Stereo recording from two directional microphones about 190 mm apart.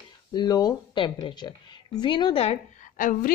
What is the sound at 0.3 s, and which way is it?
A woman's voice, 20° left (ahead or behind).